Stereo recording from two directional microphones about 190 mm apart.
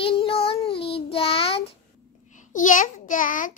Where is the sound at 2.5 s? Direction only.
45° left (ahead or behind).